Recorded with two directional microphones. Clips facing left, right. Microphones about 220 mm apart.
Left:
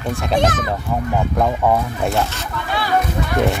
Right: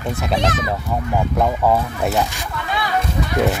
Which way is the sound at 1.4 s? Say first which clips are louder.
Even; centre (ahead or behind).